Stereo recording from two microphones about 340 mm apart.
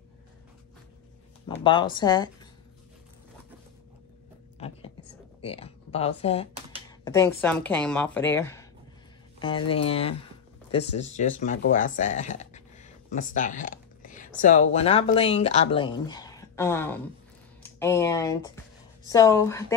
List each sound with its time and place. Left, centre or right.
1.6 s speech: centre
4.6 s a sound: centre
5.4 s speech: centre
9.7 s speech: centre